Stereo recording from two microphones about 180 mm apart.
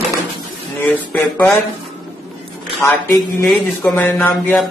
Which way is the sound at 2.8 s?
15° left (ahead or behind).